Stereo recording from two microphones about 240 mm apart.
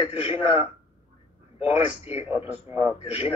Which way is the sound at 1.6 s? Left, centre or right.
Left.